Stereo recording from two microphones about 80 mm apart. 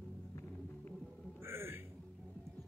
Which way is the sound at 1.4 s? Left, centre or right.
Right.